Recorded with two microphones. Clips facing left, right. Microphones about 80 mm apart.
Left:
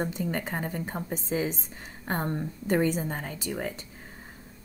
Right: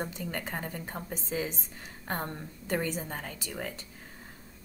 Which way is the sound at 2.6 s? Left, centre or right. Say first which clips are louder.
Left 6 dB; left.